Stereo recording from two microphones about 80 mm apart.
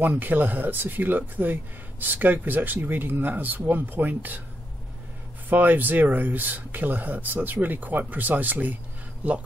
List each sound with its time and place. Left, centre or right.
0.0 s speech: right
5.5 s speech: right